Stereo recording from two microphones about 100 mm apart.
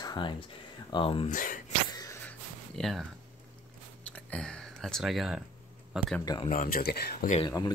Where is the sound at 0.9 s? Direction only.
60° left (ahead or behind).